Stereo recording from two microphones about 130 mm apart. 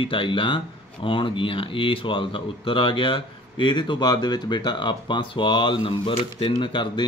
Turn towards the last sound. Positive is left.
turn(degrees=40)  # may be behind; listen again after turning